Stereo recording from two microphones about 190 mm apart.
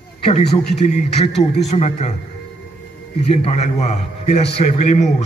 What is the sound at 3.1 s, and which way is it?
A man's voice, 30° left (ahead or behind).